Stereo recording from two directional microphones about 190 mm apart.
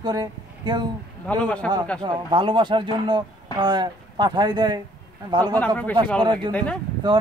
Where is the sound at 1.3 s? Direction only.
5° left (ahead or behind).